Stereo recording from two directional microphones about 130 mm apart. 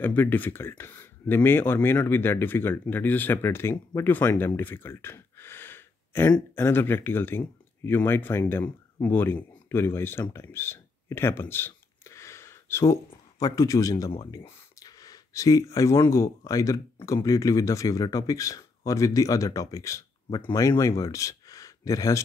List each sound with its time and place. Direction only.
0.0 s speech: 15° left (ahead or behind)
4.6 s a sound: 15° left (ahead or behind)
6.5 s speech: 15° left (ahead or behind)